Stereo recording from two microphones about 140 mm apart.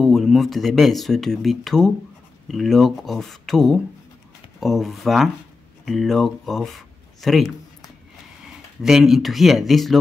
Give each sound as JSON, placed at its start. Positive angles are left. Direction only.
{"t": 0.0, "sound": "speech", "side_deg": 0}